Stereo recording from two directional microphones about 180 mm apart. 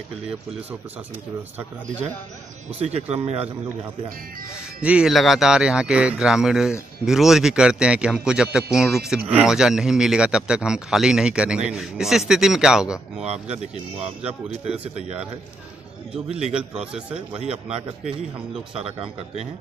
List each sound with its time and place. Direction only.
2.8 s speech: 35° right (ahead or behind)
4.8 s a man's voice: 5° right (ahead or behind)
13.3 s speech: 35° right (ahead or behind)
16.3 s speech: 35° right (ahead or behind)
16.5 s a man's voice: 5° right (ahead or behind)
18.9 s speech: 30° right (ahead or behind)